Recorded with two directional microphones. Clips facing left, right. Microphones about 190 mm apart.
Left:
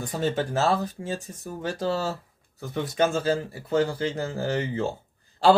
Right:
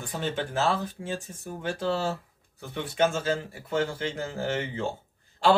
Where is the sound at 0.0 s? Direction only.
40° left (ahead or behind).